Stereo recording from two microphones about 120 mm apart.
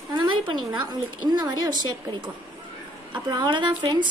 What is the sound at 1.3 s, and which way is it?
A woman's voice, 35° right (ahead or behind).